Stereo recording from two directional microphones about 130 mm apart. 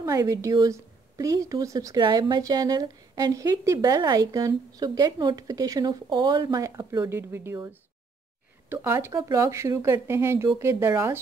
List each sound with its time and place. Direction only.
0.0 s speech: 25° right (ahead or behind)
8.7 s speech: 20° right (ahead or behind)